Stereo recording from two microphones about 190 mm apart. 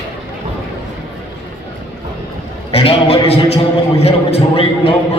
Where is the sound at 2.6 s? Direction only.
30° left (ahead or behind).